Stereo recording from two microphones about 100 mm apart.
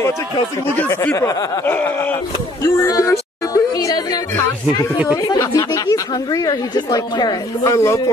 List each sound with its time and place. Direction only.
0.7 s snicker: 20° left (ahead or behind)
1.1 s snicker: 30° left (ahead or behind)
2.6 s a sound: 30° left (ahead or behind)
4.4 s speech: 30° left (ahead or behind)